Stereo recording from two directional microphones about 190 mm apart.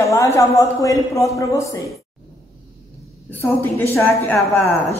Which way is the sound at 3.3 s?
10° left (ahead or behind).